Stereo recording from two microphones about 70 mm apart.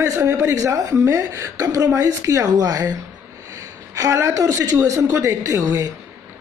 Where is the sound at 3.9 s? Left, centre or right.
Right.